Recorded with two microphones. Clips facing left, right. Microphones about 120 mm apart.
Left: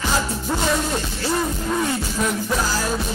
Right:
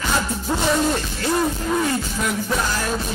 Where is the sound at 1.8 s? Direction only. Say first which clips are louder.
Even; centre (ahead or behind).